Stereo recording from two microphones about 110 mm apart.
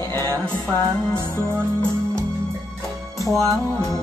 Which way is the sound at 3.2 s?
Centre (ahead or behind).